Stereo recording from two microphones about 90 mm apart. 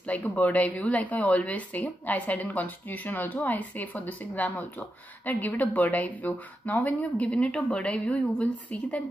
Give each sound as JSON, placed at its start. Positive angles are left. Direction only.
{"t": 0.0, "sound": "speech", "side_deg": 15}